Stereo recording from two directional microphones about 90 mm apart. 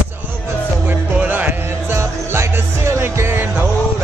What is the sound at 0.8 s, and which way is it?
Music, 20° right (ahead or behind).